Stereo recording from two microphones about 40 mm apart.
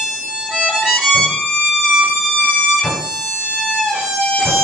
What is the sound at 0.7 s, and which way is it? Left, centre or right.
Violin, centre.